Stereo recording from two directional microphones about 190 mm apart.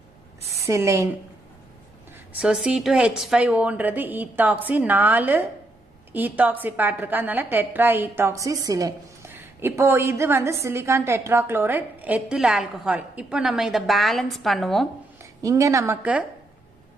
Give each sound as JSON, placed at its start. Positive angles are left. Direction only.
{"t": 0.4, "sound": "a woman's voice", "side_deg": -15}
{"t": 2.4, "sound": "a woman's voice", "side_deg": -5}
{"t": 15.1, "sound": "a woman's voice", "side_deg": -15}